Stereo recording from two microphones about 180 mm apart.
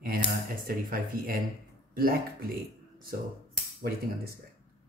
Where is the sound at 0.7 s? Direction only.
55° right (ahead or behind).